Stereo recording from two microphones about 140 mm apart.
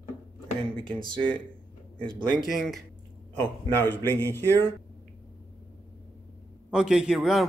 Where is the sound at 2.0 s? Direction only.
35° right (ahead or behind).